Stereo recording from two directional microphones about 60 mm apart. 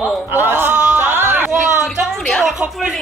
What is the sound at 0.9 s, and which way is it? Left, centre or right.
Music, right.